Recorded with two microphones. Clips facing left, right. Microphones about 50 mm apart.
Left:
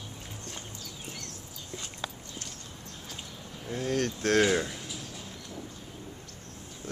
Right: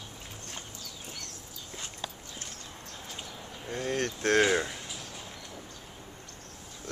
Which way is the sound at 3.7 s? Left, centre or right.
Centre.